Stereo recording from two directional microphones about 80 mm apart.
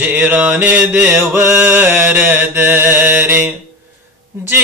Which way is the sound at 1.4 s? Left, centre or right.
Centre.